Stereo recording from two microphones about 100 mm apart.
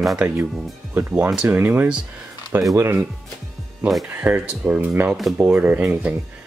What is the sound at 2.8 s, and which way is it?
Speech, 25° right (ahead or behind).